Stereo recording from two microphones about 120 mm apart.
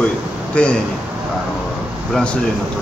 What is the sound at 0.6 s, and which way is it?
Speech, 10° left (ahead or behind).